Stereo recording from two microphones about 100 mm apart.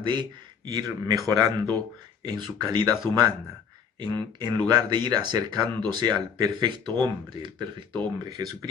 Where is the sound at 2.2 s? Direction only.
45° right (ahead or behind).